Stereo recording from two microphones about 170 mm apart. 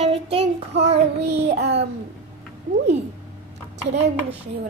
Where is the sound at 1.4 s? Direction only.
85° right.